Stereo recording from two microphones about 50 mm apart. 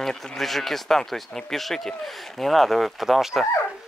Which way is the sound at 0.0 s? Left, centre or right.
Centre.